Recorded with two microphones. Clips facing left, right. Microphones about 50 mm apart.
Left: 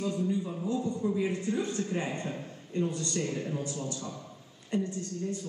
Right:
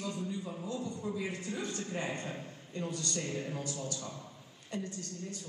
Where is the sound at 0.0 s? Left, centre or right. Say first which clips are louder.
Left 7 dB; left.